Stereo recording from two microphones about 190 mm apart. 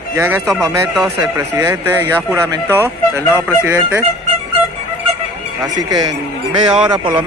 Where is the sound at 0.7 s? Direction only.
15° right (ahead or behind).